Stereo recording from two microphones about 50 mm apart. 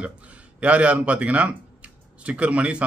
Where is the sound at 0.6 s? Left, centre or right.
Right.